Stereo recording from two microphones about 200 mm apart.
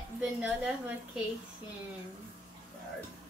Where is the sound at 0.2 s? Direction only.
5° right (ahead or behind).